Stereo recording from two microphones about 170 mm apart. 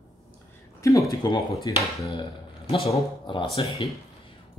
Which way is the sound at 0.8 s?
20° left (ahead or behind).